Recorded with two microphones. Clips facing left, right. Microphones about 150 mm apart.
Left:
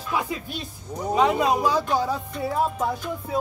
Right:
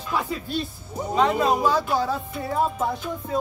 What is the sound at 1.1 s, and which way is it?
Music, 10° left (ahead or behind).